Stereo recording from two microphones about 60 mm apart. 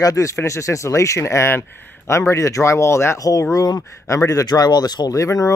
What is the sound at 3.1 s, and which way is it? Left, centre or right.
Speech, left.